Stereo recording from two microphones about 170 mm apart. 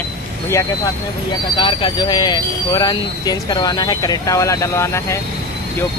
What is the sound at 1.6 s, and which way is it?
Speech, 30° left (ahead or behind).